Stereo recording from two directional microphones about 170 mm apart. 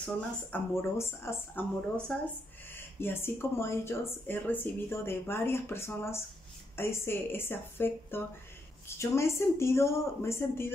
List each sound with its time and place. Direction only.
0.0 s speech: 10° left (ahead or behind)
2.1 s speech: centre (ahead or behind)
2.7 s speech: 15° left (ahead or behind)